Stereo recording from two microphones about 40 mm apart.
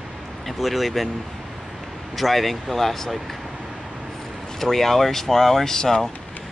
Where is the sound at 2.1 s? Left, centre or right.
Centre.